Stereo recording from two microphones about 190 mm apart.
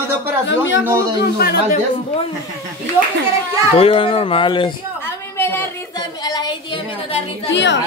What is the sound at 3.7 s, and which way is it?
Speech, 30° left (ahead or behind).